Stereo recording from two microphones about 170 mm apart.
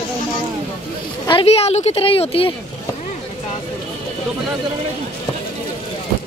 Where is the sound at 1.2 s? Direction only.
30° left (ahead or behind).